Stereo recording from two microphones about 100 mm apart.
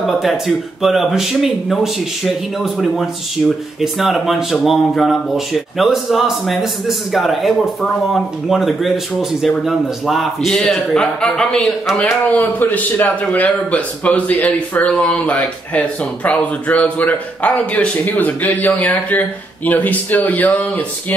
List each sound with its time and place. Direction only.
0.0 s a man's voice: centre (ahead or behind); by 20.8 s 15° left (ahead or behind)